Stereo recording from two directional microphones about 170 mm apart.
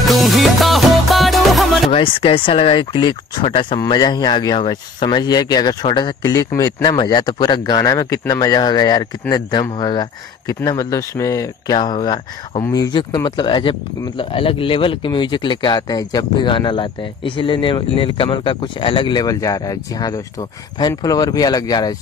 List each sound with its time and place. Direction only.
0.1 s music: centre (ahead or behind)
1.9 s speech: 30° left (ahead or behind)